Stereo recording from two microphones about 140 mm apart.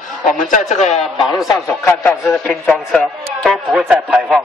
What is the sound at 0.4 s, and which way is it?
Speech, 65° left (ahead or behind).